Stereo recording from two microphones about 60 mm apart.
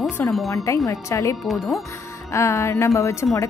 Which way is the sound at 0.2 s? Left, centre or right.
Left.